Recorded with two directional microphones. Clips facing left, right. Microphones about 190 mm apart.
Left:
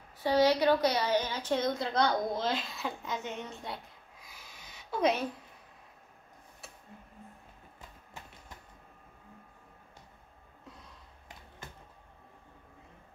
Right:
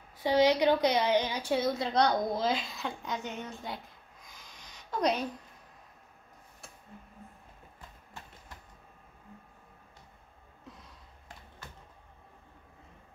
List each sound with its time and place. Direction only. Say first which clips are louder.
0.2 s a woman's voice: right 1 dB; 15° right (ahead or behind); by 5.3 s 5° left (ahead or behind)